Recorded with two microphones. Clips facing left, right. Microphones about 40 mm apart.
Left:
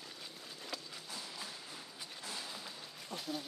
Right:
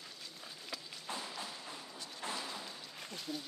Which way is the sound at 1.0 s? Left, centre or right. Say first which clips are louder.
Right 4 dB; right.